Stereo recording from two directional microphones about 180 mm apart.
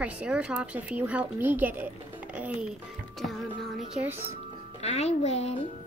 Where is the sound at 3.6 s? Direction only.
Centre (ahead or behind).